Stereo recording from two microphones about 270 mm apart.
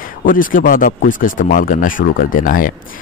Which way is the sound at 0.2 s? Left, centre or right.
Left.